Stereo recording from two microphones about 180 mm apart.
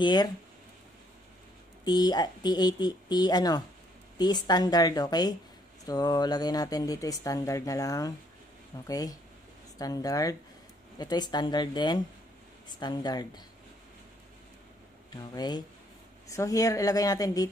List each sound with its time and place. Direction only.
0.0 s speech: 25° left (ahead or behind)
1.9 s speech: 20° left (ahead or behind)
15.0 s speech: 25° left (ahead or behind)